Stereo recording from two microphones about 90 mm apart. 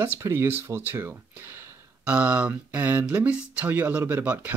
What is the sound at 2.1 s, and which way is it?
Speech, 15° right (ahead or behind).